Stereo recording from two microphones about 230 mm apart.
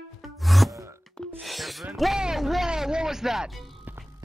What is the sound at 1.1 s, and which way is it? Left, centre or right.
Speech, centre.